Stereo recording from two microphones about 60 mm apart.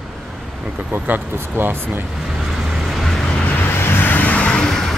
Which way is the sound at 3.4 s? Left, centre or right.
Left.